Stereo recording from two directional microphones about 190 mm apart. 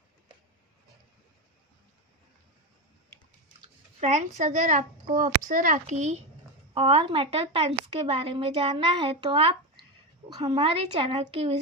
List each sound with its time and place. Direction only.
4.0 s a child's voice: 40° right (ahead or behind)